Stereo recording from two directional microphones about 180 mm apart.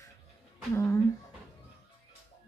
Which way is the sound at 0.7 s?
15° left (ahead or behind).